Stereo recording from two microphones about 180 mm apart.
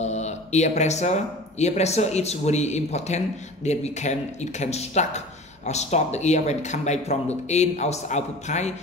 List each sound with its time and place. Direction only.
0.0 s speech: 40° left (ahead or behind)